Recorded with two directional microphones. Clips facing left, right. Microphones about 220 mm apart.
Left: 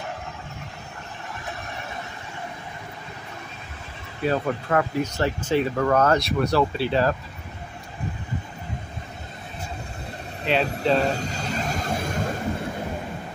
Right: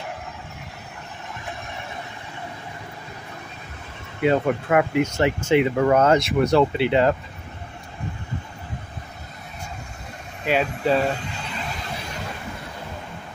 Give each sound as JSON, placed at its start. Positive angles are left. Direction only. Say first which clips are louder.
{"t": 4.2, "sound": "speech", "louder": "right 4 dB", "side_deg": -20}
{"t": 10.4, "sound": "speech", "louder": "right 1 dB", "side_deg": -10}
{"t": 11.1, "sound": "vehicle", "louder": "left 4 dB", "side_deg": 40}